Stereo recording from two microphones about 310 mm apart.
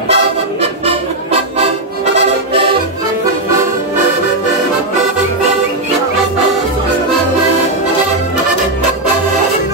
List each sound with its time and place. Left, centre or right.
0.1 s music: centre
2.1 s accordion: centre